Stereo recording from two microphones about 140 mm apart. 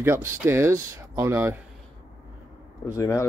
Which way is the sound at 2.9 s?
20° left (ahead or behind).